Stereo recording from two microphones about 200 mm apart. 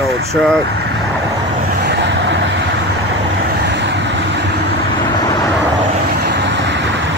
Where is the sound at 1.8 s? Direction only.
60° right (ahead or behind).